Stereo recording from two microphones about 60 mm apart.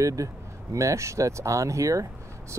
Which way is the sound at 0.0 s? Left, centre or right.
Right.